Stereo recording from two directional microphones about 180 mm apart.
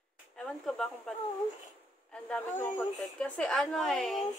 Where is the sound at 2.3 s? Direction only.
15° left (ahead or behind).